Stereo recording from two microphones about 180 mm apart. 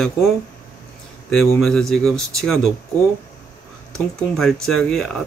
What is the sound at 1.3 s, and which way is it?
Speech, centre (ahead or behind).